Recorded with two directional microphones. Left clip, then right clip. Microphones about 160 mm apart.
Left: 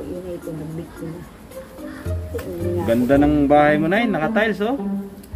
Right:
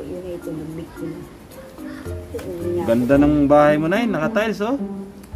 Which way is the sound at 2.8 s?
20° right (ahead or behind).